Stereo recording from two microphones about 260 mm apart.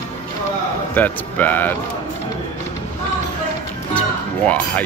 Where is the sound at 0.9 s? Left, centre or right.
Centre.